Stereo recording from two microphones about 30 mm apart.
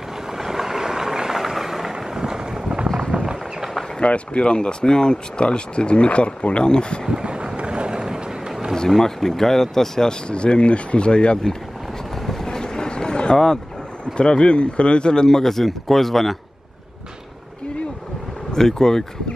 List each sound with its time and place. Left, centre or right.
0.3 s vehicle: centre; by 2.9 s right
4.0 s speech: left
7.1 s vehicle: right
8.3 s run: right
8.7 s speech: centre
10.2 s speech: left
12.2 s vehicle: centre
12.4 s vehicle: left
14.1 s speech: left; by 16.3 s centre
18.5 s speech: centre